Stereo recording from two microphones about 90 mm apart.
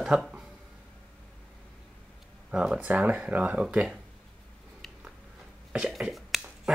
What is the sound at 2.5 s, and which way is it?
Speech, 5° right (ahead or behind).